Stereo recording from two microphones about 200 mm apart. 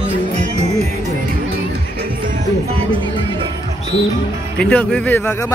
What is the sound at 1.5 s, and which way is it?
Music, 45° right (ahead or behind).